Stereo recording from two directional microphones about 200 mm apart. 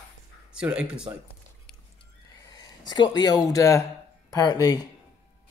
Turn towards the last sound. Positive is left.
turn(degrees=20)  # may be behind; listen again after turning